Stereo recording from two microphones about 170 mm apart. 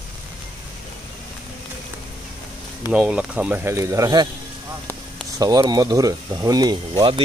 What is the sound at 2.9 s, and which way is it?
Speech, 5° right (ahead or behind).